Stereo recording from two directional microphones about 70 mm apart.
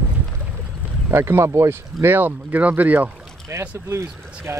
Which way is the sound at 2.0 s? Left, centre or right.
Right.